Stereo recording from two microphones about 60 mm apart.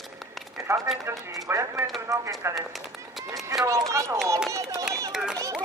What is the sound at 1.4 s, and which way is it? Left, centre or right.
A man's voice, right.